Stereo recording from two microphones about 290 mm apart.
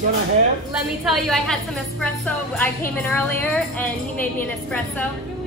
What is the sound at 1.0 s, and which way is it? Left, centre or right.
Speech, centre.